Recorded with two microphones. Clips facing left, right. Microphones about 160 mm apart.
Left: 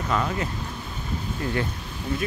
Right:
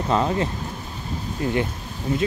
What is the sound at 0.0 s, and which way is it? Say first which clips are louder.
Speech: right 5 dB; 30° right (ahead or behind).